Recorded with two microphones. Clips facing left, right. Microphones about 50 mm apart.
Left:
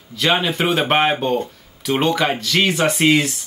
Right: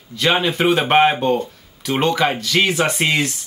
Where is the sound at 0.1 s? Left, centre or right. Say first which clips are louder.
Right 1 dB; centre.